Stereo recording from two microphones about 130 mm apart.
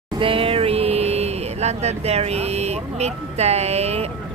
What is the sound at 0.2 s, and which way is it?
Speech, 45° right (ahead or behind).